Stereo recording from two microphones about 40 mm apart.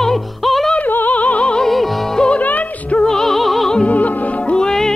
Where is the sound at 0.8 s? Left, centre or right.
Left.